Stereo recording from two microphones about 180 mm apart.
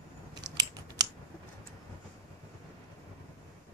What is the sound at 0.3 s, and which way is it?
Scissors, 25° right (ahead or behind).